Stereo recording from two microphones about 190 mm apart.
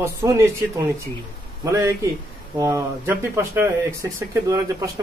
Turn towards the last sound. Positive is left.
turn(degrees=-20)  # may be behind; listen again after turning